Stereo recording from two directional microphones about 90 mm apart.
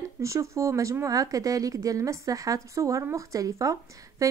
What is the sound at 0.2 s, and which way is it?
A woman's voice, 35° right (ahead or behind).